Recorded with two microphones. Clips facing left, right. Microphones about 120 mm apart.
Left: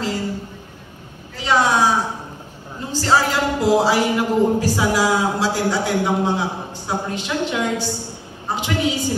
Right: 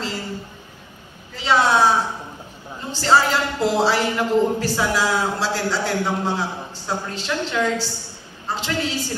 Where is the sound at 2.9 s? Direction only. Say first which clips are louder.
Even; 10° left (ahead or behind).